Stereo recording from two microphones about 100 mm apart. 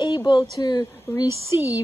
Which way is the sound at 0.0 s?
50° left (ahead or behind).